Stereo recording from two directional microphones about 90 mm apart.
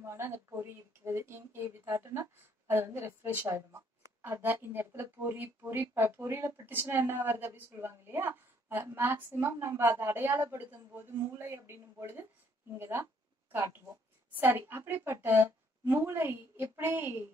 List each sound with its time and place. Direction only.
0.0 s speech: 30° right (ahead or behind)
14.3 s speech: 25° right (ahead or behind)